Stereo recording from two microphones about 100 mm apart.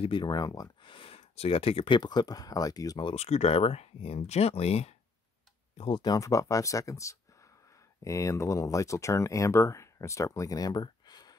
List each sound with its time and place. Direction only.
0.0 s speech: 50° left (ahead or behind)
0.8 s speech: 65° left (ahead or behind)
2.0 s speech: 45° left (ahead or behind)
3.2 s speech: 90° left
5.9 s speech: 35° left (ahead or behind)